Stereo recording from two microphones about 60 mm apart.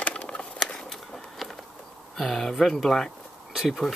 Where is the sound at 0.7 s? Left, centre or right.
Centre.